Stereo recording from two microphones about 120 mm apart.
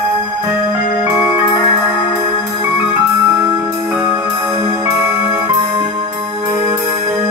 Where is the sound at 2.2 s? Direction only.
30° right (ahead or behind).